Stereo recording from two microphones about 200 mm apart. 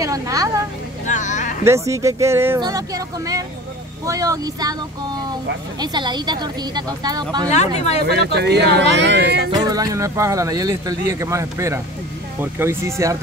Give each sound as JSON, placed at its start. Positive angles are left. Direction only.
{"t": 0.0, "sound": "speech", "side_deg": -15}
{"t": 1.0, "sound": "a sound", "side_deg": 35}
{"t": 1.6, "sound": "a woman's voice", "side_deg": -15}
{"t": 7.5, "sound": "speech", "side_deg": 35}
{"t": 8.3, "sound": "speech", "side_deg": -55}
{"t": 9.7, "sound": "speech", "side_deg": -15}